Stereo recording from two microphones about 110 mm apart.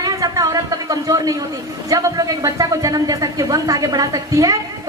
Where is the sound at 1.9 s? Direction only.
30° right (ahead or behind).